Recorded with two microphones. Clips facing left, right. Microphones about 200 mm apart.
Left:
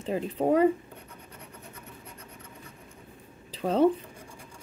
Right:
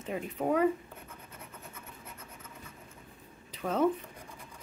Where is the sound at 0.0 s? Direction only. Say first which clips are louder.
Left 6 dB; 30° left (ahead or behind).